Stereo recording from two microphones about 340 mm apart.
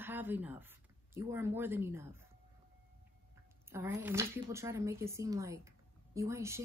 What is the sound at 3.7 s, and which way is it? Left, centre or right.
Speech, centre.